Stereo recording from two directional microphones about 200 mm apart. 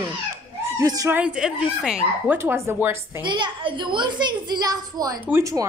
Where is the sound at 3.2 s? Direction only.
25° right (ahead or behind).